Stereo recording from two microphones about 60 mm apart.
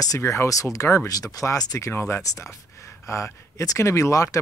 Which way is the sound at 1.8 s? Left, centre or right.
Left.